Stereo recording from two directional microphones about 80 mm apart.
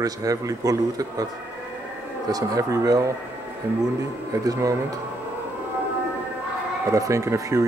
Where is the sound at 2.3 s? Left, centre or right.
Right.